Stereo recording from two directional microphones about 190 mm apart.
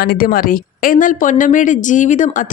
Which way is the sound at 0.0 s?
50° left (ahead or behind).